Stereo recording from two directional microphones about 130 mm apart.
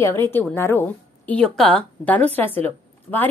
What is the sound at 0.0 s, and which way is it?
A woman's voice, 20° left (ahead or behind).